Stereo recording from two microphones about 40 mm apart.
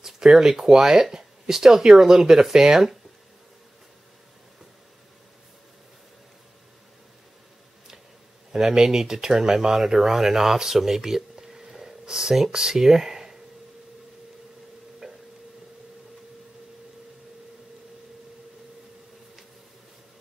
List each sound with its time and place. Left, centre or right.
0.0 s speech: centre
8.5 s speech: centre
15.0 s a sound: centre